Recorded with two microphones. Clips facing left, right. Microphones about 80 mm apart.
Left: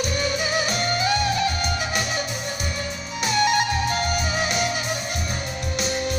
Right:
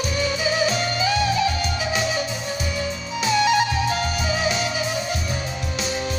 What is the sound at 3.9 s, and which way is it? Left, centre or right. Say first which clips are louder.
Music: right 1 dB; left.